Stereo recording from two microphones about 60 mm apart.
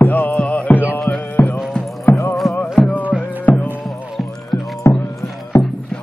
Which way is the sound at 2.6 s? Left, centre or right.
Left.